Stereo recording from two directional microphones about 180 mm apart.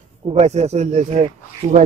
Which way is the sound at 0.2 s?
35° right (ahead or behind).